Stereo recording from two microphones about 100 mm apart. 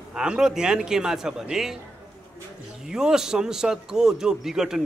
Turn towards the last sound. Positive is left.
turn(degrees=-5)  # may be behind; listen again after turning